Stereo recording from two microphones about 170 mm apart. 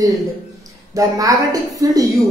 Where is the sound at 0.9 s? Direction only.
20° right (ahead or behind).